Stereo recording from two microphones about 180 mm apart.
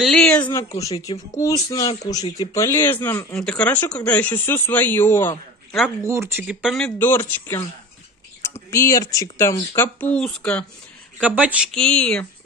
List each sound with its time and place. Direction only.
0.0 s speech: 5° left (ahead or behind)
0.7 s speech: 20° left (ahead or behind)
6.0 s speech: 15° right (ahead or behind)
7.0 s speech: 10° left (ahead or behind)
8.6 s speech: 15° left (ahead or behind)
11.1 s speech: 10° right (ahead or behind)
11.7 s speech: 5° left (ahead or behind)